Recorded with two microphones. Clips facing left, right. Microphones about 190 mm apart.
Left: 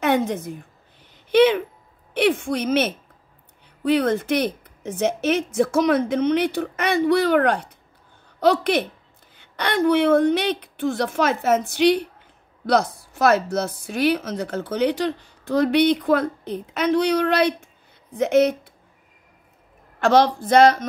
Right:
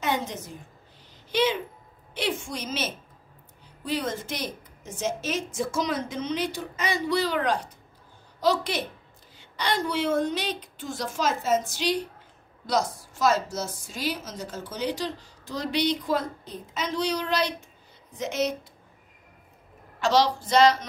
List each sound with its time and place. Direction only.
0.0 s a woman's voice: 60° left (ahead or behind)
20.0 s a woman's voice: 55° left (ahead or behind)